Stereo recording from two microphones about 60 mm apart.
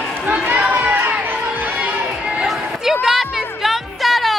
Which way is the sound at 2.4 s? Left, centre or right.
Centre.